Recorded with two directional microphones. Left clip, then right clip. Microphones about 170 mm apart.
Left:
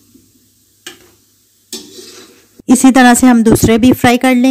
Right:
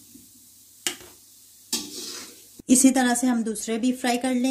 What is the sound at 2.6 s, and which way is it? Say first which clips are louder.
Speech: left 13 dB; 45° left (ahead or behind).